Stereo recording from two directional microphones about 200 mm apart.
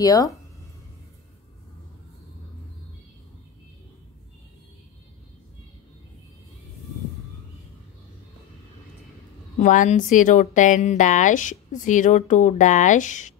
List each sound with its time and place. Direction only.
0.0 s speech: 15° left (ahead or behind)
9.6 s speech: 40° left (ahead or behind)